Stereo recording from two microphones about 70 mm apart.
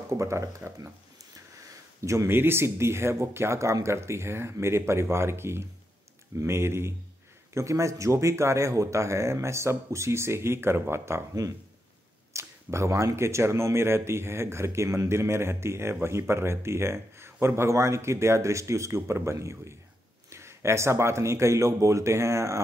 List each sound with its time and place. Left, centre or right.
0.2 s speech: right
2.0 s speech: right
12.3 s speech: right